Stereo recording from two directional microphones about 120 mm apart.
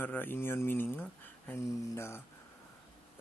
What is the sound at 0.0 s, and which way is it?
Speech, 15° left (ahead or behind).